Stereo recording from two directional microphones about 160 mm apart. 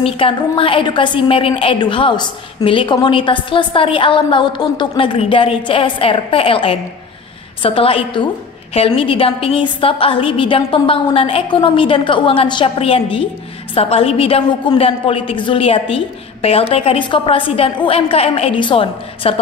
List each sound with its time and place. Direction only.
0.0 s a woman's voice: 35° left (ahead or behind)